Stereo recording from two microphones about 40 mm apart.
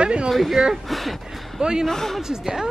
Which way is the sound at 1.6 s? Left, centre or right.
Centre.